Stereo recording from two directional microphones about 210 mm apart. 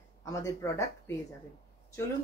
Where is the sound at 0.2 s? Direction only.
15° left (ahead or behind).